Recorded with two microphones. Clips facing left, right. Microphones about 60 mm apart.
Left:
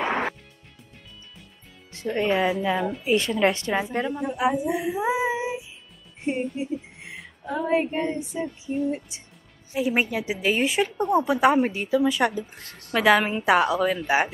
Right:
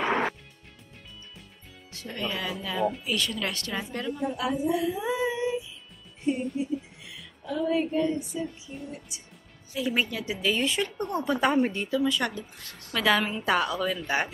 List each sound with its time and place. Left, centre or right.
1.9 s a woman's voice: left
4.7 s child singing: left
6.2 s speech: left
7.4 s female singing: left
7.7 s child singing: left
8.2 s female singing: left
9.8 s a woman's voice: centre
12.0 s speech: centre
12.4 s female singing: left
12.9 s speech: centre